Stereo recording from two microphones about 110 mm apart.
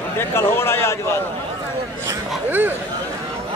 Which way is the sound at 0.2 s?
20° left (ahead or behind).